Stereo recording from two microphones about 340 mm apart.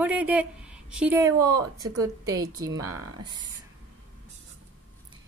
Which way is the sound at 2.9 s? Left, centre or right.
Right.